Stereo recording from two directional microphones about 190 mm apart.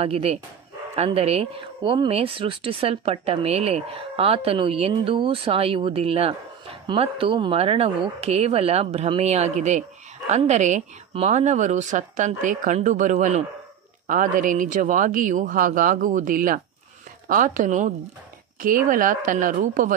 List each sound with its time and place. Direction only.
0.0 s speech: 30° right (ahead or behind)